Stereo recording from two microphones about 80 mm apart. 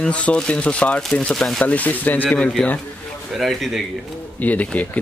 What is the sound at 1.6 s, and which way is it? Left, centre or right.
Speech, centre.